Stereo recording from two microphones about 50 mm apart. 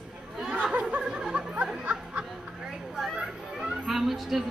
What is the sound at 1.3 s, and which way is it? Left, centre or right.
Speech, right.